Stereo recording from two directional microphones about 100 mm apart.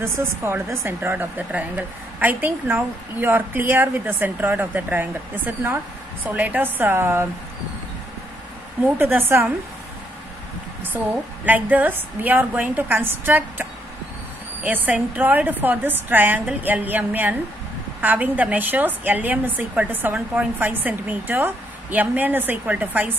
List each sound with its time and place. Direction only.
0.0 s a woman's voice: 25° right (ahead or behind)
8.8 s a woman's voice: 20° right (ahead or behind)
11.4 s a woman's voice: 15° right (ahead or behind)